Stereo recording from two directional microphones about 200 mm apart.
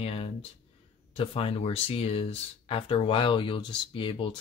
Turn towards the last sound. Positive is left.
turn(degrees=25)  # may be behind; listen again after turning